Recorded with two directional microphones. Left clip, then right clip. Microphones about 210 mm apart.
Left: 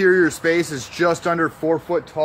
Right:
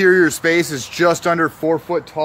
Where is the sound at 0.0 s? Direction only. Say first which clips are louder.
Right 3 dB; 40° right (ahead or behind).